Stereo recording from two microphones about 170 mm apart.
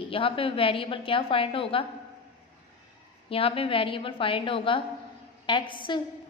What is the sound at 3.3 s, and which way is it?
A woman's voice, 35° left (ahead or behind).